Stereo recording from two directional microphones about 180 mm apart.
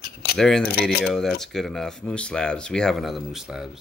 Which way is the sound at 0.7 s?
60° left (ahead or behind).